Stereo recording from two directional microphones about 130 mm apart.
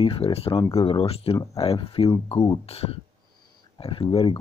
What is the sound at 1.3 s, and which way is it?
Speech, 25° left (ahead or behind).